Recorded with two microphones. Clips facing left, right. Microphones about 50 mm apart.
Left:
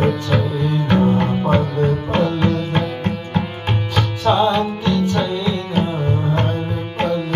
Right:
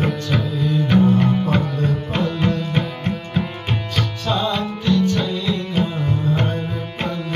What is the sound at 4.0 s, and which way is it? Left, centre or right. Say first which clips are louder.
Music: left 7 dB; left.